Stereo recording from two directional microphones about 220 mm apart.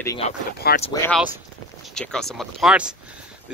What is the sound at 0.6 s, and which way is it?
Speech, 45° left (ahead or behind).